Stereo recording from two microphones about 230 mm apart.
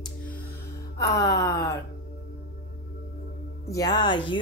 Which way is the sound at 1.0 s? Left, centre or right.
Centre.